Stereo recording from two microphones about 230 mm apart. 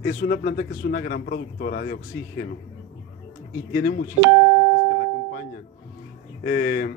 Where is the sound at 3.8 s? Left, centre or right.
Left.